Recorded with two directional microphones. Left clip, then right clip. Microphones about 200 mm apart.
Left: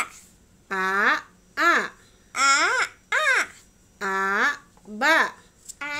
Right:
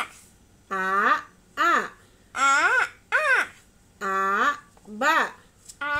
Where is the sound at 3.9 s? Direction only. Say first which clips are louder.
Even; 35° left (ahead or behind).